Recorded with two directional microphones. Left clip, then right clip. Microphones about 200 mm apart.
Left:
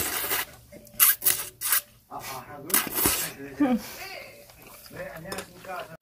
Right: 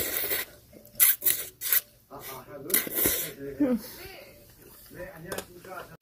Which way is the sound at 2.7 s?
25° left (ahead or behind).